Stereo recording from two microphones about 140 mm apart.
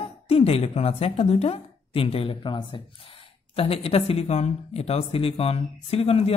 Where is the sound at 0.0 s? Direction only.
45° left (ahead or behind).